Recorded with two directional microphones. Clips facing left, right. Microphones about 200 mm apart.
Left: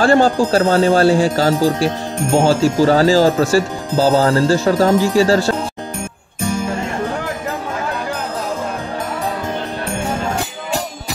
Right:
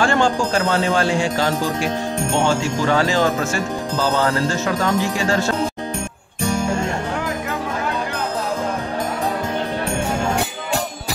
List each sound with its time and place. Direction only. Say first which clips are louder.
0.0 s speech: left 5 dB; 35° left (ahead or behind)